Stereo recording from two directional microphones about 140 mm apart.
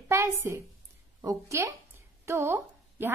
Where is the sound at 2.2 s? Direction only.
20° right (ahead or behind).